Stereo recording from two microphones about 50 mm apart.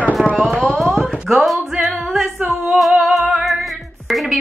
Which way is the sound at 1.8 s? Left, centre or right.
Centre.